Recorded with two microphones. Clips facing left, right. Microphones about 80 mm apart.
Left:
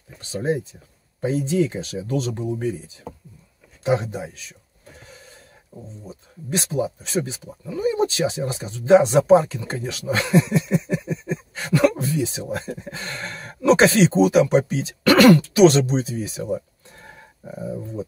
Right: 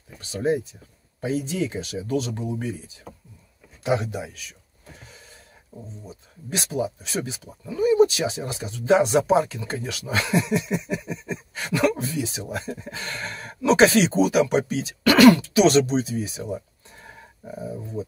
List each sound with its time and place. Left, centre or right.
0.2 s speech: left
3.8 s speech: left
6.0 s speech: left
15.0 s speech: left